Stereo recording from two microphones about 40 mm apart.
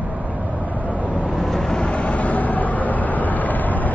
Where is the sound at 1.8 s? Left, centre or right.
Left.